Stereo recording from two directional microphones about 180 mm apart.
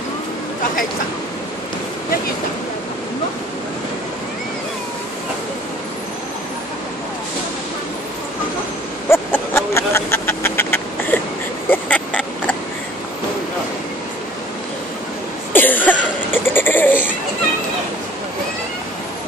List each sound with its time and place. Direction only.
9.1 s vehicle: 10° left (ahead or behind)
11.7 s pig: 10° left (ahead or behind)
15.5 s cough: 10° left (ahead or behind)
16.5 s a sound: 10° left (ahead or behind)